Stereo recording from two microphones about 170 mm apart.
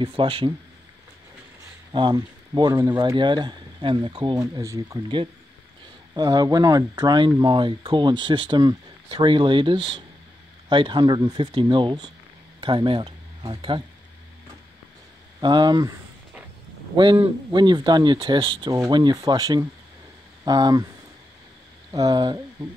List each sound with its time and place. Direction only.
0.0 s speech: 30° right (ahead or behind)
1.9 s speech: 25° right (ahead or behind)
15.4 s speech: 25° right (ahead or behind)
16.9 s speech: 25° right (ahead or behind)
21.9 s speech: 25° right (ahead or behind)